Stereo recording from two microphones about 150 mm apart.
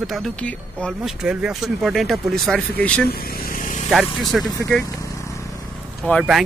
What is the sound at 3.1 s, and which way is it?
Vehicle, 85° left.